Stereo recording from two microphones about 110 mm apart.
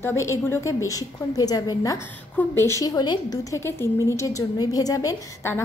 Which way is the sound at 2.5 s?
25° left (ahead or behind).